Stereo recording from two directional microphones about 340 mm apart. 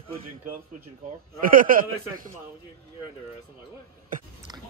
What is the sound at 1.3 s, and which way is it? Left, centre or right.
Speech, right.